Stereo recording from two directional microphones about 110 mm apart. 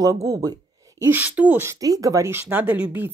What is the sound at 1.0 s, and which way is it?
Speech, 15° right (ahead or behind).